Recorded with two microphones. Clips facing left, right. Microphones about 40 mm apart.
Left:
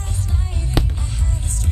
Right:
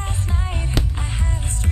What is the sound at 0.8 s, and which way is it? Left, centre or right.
Music, centre.